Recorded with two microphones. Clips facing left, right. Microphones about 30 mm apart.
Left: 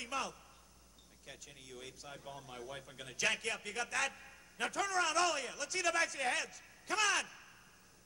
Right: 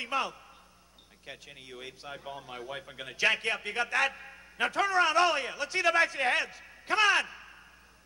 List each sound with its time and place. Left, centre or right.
0.0 s speech: right